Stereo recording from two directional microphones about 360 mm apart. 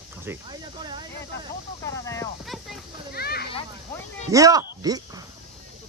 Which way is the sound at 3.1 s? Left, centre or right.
Left.